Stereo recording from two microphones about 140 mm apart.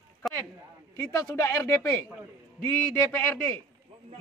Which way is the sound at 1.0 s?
25° left (ahead or behind).